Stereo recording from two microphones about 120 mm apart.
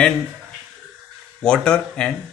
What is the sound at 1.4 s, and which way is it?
Speech, 5° left (ahead or behind).